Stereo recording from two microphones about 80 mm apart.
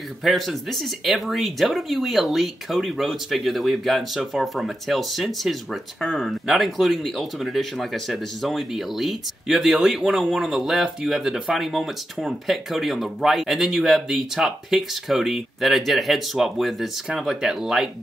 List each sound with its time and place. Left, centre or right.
0.2 s speech: centre